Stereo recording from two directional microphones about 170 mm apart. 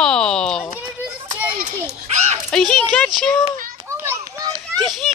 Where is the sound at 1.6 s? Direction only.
40° right (ahead or behind).